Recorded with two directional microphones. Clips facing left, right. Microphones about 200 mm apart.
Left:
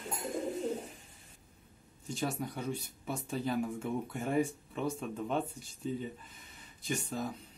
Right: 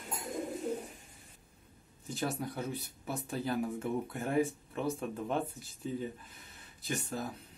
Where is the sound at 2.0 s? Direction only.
Centre (ahead or behind).